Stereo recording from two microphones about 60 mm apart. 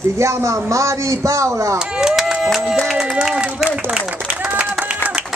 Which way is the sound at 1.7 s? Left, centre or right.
Centre.